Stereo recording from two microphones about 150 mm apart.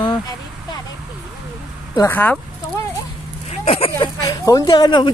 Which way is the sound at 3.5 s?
45° left (ahead or behind).